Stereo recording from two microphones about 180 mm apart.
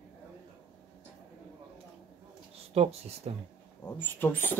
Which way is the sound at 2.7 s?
35° right (ahead or behind).